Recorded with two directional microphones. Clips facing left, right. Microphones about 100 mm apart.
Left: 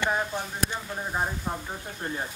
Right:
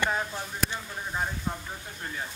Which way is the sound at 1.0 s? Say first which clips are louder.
Left 2 dB; 25° left (ahead or behind).